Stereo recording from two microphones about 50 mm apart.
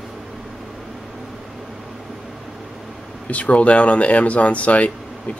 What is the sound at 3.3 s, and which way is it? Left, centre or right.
Speech, left.